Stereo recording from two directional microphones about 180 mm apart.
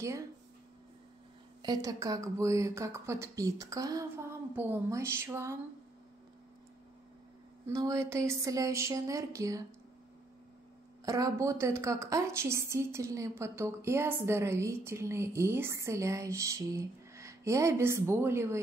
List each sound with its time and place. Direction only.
1.6 s speech: 20° right (ahead or behind)
7.6 s speech: 15° right (ahead or behind)
11.1 s speech: 20° right (ahead or behind)